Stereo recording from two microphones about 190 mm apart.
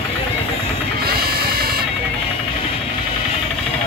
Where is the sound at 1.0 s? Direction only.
55° right (ahead or behind).